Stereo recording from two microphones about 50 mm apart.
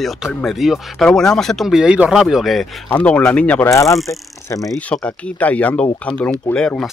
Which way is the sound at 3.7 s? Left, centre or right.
Left.